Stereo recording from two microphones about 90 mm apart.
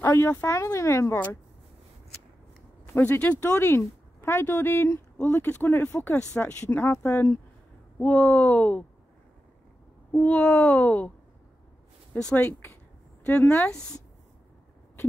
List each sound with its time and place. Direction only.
0.0 s speech: 25° left (ahead or behind)
0.5 s speech: 35° left (ahead or behind)
2.9 s speech: 20° left (ahead or behind)
3.4 s speech: 30° left (ahead or behind)
10.1 s speech: 15° left (ahead or behind)
12.1 s speech: 10° left (ahead or behind)